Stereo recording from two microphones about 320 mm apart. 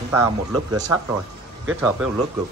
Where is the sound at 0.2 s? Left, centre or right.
Centre.